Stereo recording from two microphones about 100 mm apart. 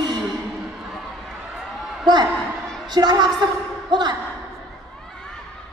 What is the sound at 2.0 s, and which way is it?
A woman's voice, 45° right (ahead or behind).